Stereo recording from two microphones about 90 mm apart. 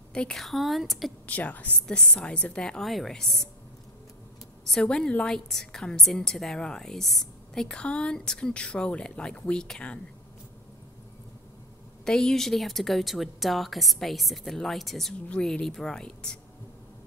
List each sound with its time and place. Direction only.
0.1 s speech: 10° left (ahead or behind)
1.2 s a woman's voice: 15° left (ahead or behind)
4.6 s a woman's voice: 5° left (ahead or behind)
12.0 s a woman's voice: 5° left (ahead or behind)